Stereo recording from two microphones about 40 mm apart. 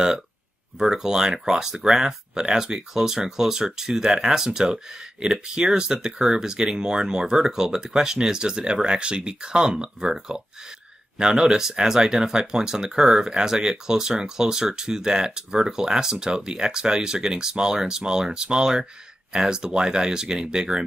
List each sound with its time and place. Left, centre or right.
0.7 s speech: centre